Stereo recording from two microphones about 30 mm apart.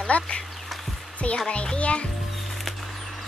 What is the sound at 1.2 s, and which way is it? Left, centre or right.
Speech, left.